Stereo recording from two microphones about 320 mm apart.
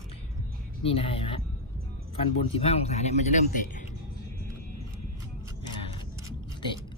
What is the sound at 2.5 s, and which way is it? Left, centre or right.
A man's voice, centre.